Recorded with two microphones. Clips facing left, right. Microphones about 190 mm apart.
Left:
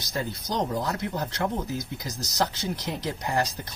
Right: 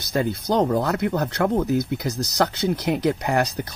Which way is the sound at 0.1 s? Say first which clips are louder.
Right 9 dB; 60° right (ahead or behind).